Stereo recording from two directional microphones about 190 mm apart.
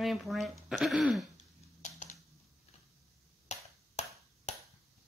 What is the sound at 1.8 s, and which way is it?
Typing, 40° left (ahead or behind).